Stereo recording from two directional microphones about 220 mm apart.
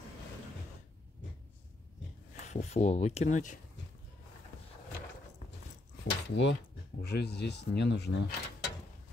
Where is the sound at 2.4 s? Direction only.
30° left (ahead or behind).